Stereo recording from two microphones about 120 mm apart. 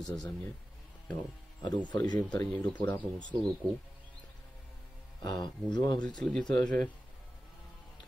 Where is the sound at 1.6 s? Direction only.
35° left (ahead or behind).